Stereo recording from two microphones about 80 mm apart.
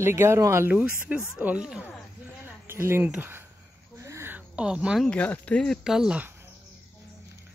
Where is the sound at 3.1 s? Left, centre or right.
Right.